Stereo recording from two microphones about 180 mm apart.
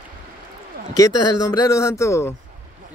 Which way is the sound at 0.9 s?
20° left (ahead or behind).